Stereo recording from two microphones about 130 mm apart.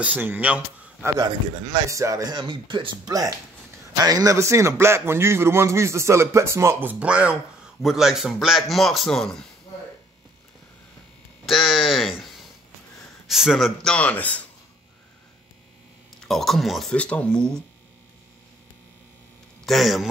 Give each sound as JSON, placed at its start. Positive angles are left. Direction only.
{"t": 0.0, "sound": "speech", "side_deg": -15}
{"t": 1.0, "sound": "a man's voice", "side_deg": -25}
{"t": 11.4, "sound": "a man's voice", "side_deg": 0}
{"t": 16.3, "sound": "a man's voice", "side_deg": 0}
{"t": 19.6, "sound": "speech", "side_deg": 0}